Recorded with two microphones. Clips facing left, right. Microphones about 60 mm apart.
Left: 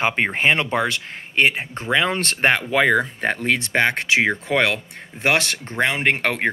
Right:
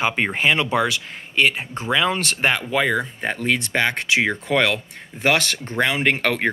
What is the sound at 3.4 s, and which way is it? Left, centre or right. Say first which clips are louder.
Speech: left 1 dB; left.